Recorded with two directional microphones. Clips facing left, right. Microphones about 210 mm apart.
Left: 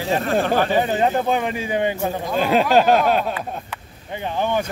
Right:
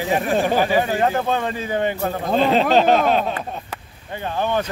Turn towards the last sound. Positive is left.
turn(degrees=15)  # may be behind; listen again after turning